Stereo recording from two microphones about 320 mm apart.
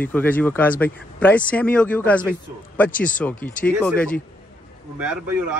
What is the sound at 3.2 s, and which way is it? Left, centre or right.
Speech, centre.